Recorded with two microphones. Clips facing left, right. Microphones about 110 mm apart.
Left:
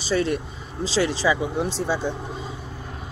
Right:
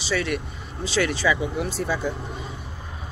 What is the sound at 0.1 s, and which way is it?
Speech, 35° left (ahead or behind).